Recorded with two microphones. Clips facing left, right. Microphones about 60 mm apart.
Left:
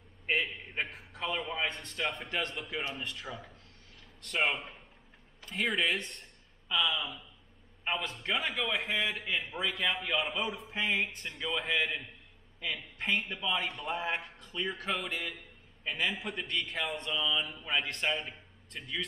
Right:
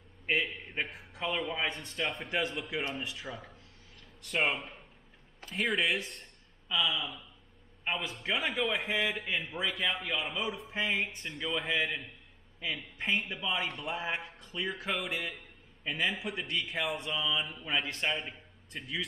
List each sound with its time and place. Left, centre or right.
0.3 s a man's voice: centre
2.2 s a man's voice: centre
2.5 s a man's voice: centre
8.7 s a man's voice: centre
9.1 s a man's voice: centre